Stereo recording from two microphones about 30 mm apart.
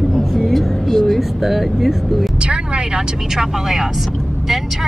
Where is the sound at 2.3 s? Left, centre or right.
Right.